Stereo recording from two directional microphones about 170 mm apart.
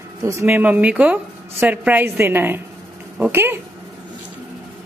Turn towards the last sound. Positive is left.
turn(degrees=-10)  # may be behind; listen again after turning